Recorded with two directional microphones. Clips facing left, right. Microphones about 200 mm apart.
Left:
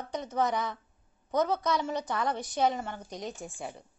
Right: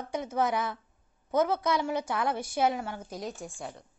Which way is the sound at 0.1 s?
10° right (ahead or behind).